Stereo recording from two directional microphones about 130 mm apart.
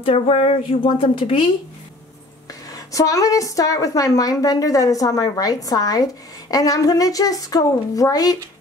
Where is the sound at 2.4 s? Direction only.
25° left (ahead or behind).